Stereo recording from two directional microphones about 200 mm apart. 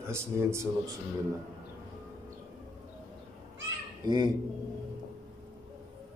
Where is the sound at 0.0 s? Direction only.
15° right (ahead or behind).